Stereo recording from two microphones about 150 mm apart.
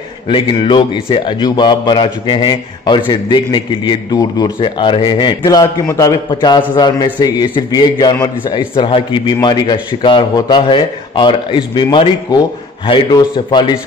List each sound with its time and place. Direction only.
0.3 s a man's voice: 35° left (ahead or behind)